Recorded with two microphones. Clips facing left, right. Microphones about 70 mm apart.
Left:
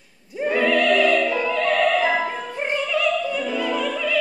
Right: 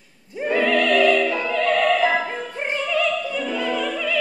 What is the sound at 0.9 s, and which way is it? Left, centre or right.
Opera, right.